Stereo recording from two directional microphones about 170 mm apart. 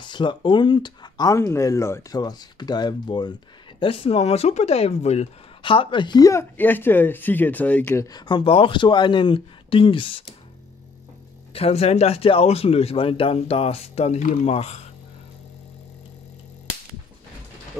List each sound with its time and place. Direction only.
0.0 s speech: 30° left (ahead or behind)
11.5 s speech: 35° left (ahead or behind)